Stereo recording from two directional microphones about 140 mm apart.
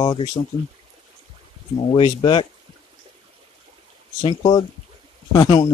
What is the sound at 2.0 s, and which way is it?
Speech, 35° left (ahead or behind).